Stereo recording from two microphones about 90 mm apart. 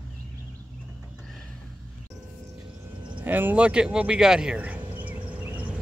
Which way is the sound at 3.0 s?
15° right (ahead or behind).